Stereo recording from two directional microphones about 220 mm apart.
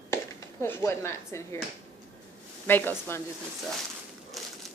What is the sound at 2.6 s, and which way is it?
Speech, 10° left (ahead or behind).